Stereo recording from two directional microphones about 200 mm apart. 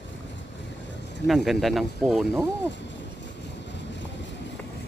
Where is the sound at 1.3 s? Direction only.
Centre (ahead or behind).